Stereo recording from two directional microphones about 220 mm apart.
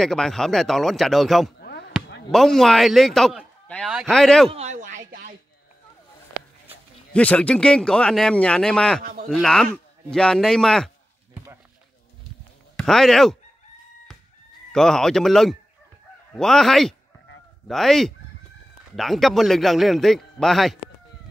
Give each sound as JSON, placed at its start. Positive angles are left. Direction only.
{"t": 0.0, "sound": "a man's voice", "side_deg": 0}
{"t": 1.6, "sound": "basketball bounce", "side_deg": 50}
{"t": 2.3, "sound": "a man's voice", "side_deg": 0}
{"t": 4.5, "sound": "speech", "side_deg": -30}
{"t": 7.1, "sound": "a man's voice", "side_deg": 5}
{"t": 9.0, "sound": "a sound", "side_deg": -35}
{"t": 9.3, "sound": "a man's voice", "side_deg": 0}
{"t": 12.7, "sound": "speech", "side_deg": 0}
{"t": 14.7, "sound": "a man's voice", "side_deg": 0}